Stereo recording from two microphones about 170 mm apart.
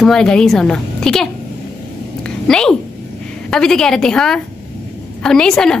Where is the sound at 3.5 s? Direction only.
5° left (ahead or behind).